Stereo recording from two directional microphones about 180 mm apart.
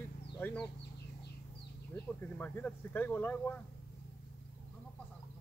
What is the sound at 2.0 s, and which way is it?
Speech, 10° left (ahead or behind).